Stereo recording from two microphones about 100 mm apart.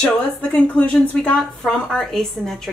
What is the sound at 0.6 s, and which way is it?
A woman's voice, 10° left (ahead or behind).